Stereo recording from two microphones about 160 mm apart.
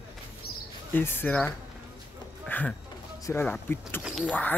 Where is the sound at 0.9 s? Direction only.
15° left (ahead or behind).